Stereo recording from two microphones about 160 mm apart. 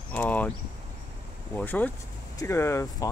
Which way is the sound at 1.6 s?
10° left (ahead or behind).